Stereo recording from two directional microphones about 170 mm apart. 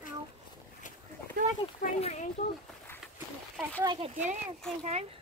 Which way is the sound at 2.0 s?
40° left (ahead or behind).